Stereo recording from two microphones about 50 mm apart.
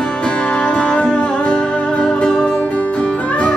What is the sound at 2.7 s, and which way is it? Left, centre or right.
Music, left.